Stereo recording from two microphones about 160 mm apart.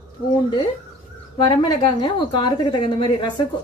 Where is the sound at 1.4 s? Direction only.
25° left (ahead or behind).